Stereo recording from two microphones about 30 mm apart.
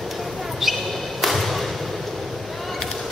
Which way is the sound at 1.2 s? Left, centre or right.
Centre.